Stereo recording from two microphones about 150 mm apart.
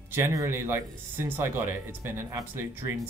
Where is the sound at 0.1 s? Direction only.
20° right (ahead or behind).